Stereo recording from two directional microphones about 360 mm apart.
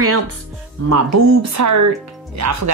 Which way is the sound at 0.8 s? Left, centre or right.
Right.